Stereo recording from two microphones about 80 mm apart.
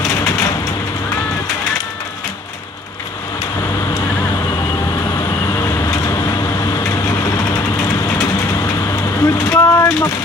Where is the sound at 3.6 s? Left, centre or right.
Left.